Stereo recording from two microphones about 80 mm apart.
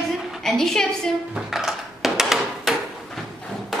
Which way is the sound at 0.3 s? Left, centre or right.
Centre.